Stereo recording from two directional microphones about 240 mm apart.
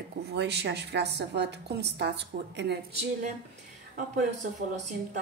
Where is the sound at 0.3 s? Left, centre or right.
Right.